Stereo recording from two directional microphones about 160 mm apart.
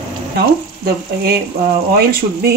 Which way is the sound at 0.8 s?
85° right.